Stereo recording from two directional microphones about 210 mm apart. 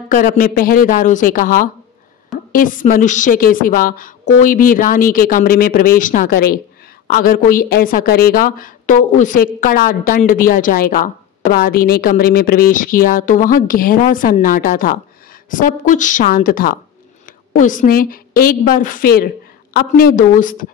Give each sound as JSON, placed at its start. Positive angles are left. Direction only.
{"t": 0.1, "sound": "a woman's voice", "side_deg": 40}